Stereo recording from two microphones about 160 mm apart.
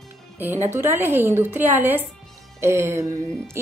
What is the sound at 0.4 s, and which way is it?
Speech, 15° right (ahead or behind).